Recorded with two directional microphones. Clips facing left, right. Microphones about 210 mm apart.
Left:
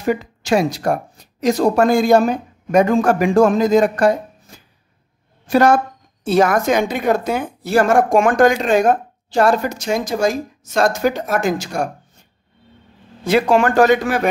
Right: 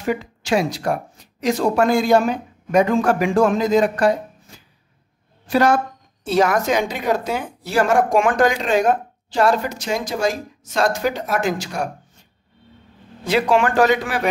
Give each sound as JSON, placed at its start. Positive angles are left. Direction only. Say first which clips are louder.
{"t": 0.0, "sound": "a woman's voice", "louder": "left 3 dB", "side_deg": 40}
{"t": 5.5, "sound": "a woman's voice", "louder": "left 3 dB", "side_deg": 50}
{"t": 13.2, "sound": "a woman's voice", "louder": "left 3 dB", "side_deg": 45}